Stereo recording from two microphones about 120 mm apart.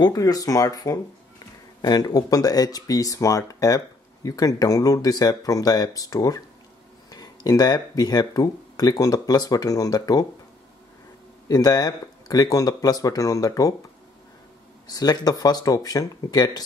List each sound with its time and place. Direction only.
0.0 s speech: 30° left (ahead or behind)
11.4 s speech: 30° left (ahead or behind)
14.9 s speech: 35° left (ahead or behind)